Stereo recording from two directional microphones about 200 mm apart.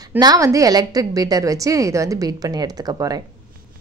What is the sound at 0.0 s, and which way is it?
A woman's voice, 20° right (ahead or behind).